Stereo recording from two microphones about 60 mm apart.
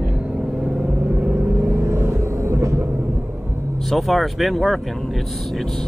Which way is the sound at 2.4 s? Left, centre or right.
Right.